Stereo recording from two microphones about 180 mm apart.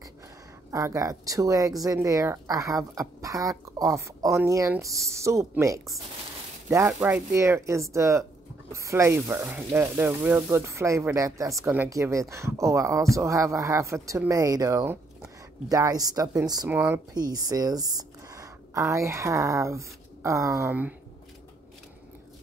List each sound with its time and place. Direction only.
0.7 s a woman's voice: 15° right (ahead or behind)